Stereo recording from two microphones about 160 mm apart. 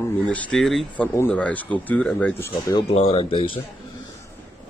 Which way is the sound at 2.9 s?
40° left (ahead or behind).